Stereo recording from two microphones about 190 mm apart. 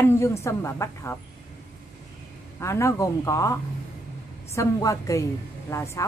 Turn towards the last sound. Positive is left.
turn(degrees=15)  # may be behind; listen again after turning